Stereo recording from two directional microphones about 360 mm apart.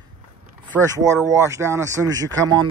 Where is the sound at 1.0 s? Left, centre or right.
Centre.